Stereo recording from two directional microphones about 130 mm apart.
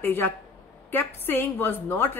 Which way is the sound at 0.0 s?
15° left (ahead or behind).